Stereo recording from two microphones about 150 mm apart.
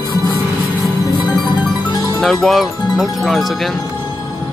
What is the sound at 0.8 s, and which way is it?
Music, centre (ahead or behind).